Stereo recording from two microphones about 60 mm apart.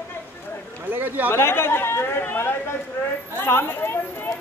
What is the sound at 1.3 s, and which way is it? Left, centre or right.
Speech, left.